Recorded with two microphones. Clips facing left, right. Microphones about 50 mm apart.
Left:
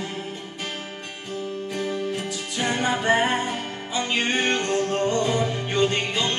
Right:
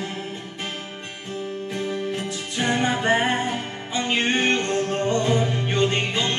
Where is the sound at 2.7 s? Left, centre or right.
Centre.